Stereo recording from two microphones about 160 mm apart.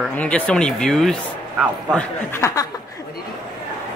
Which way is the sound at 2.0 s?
15° left (ahead or behind).